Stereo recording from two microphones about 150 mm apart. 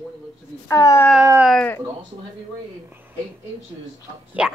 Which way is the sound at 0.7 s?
20° left (ahead or behind).